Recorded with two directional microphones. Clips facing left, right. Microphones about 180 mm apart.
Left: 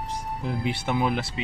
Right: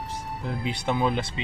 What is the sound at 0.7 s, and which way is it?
Speech, 5° left (ahead or behind).